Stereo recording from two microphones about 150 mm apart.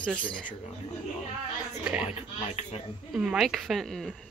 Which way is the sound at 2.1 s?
45° left (ahead or behind).